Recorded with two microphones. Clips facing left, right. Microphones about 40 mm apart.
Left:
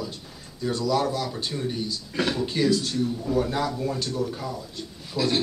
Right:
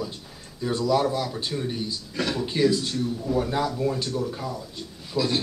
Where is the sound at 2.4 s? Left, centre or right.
Centre.